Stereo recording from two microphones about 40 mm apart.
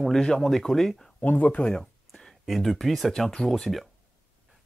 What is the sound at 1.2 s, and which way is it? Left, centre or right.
Speech, left.